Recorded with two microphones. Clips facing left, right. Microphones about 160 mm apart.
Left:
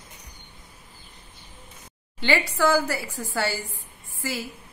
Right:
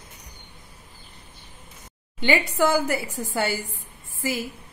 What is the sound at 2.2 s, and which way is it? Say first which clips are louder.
Speech: right 1 dB; 15° right (ahead or behind).